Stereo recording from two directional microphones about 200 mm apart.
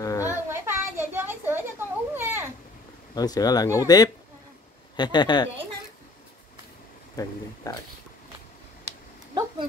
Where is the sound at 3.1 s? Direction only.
20° left (ahead or behind).